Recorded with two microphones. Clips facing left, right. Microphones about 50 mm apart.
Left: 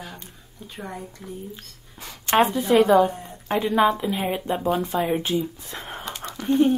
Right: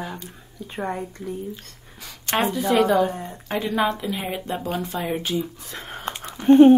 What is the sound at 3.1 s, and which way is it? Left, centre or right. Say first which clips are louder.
Speech: right 2 dB; right.